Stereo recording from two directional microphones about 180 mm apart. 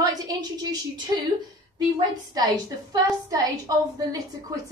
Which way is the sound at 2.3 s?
20° right (ahead or behind).